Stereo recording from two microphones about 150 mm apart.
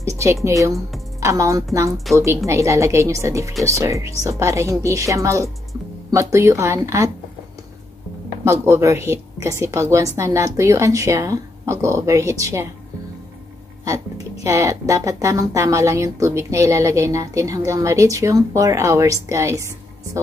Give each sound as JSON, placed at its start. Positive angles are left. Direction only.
{"t": 0.0, "sound": "a woman's voice", "side_deg": -20}
{"t": 8.5, "sound": "a woman's voice", "side_deg": -20}
{"t": 14.4, "sound": "a woman's voice", "side_deg": -20}